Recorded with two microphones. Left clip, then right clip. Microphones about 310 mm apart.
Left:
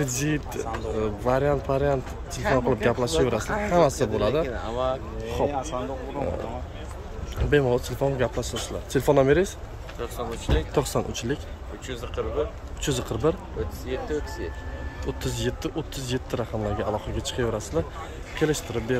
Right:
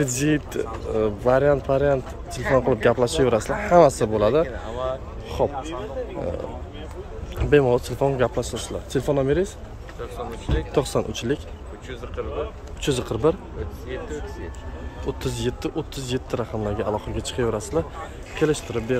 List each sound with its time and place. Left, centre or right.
0.0 s speech: centre
4.6 s a sound: left
5.4 s speech: centre
7.4 s speech: centre
9.9 s speech: left
10.7 s speech: centre
12.2 s speech: left
12.8 s speech: centre
15.0 s speech: centre